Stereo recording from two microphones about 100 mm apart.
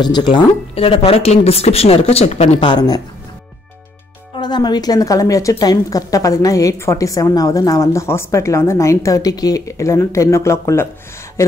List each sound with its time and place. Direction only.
0.0 s speech: 45° left (ahead or behind)
0.7 s speech: 80° left
2.7 s a woman's voice: 40° left (ahead or behind)
4.4 s a woman's voice: 45° left (ahead or behind); by 10.9 s 25° left (ahead or behind)